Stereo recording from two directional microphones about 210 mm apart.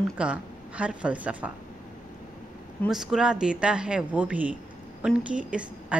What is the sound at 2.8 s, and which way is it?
A woman's voice, centre (ahead or behind).